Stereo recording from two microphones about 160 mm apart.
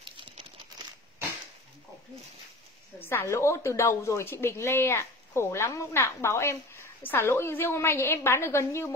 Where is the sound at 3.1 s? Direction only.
15° left (ahead or behind).